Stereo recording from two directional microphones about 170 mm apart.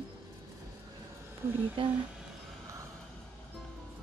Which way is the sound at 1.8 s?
30° right (ahead or behind).